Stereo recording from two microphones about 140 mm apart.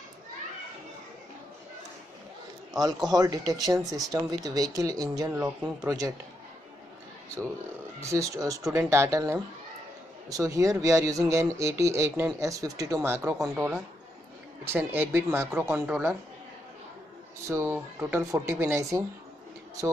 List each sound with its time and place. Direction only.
3.1 s speech: 25° right (ahead or behind)
8.0 s speech: 20° right (ahead or behind)
17.5 s speech: 15° right (ahead or behind)